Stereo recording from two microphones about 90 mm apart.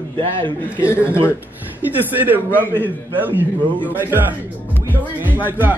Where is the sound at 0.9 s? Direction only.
15° right (ahead or behind).